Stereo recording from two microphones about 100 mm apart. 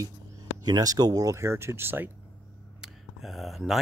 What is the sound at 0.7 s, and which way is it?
Speech, 40° right (ahead or behind).